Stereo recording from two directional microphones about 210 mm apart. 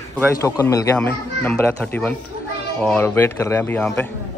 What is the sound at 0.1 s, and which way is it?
Speech, 10° left (ahead or behind).